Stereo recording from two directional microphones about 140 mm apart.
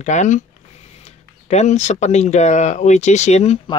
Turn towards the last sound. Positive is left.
turn(degrees=50)  # may be behind; listen again after turning